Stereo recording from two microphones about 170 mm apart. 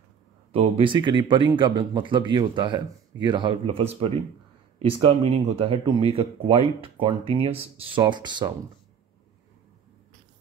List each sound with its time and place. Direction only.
0.5 s speech: 35° right (ahead or behind)